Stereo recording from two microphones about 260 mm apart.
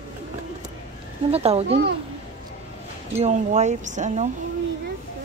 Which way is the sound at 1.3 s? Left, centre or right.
Right.